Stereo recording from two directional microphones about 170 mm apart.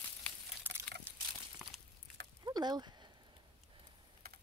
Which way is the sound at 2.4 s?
25° right (ahead or behind).